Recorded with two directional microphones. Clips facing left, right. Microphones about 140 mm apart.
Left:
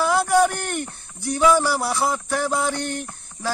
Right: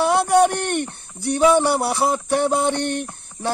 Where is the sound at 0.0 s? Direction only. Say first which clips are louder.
Right 2 dB; 25° right (ahead or behind).